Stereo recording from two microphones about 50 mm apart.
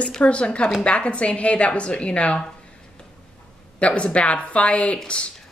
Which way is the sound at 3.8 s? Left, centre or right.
Left.